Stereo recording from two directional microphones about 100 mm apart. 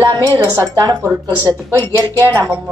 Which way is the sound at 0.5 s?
35° right (ahead or behind).